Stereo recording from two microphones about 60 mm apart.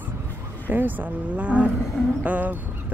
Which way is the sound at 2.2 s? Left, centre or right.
Right.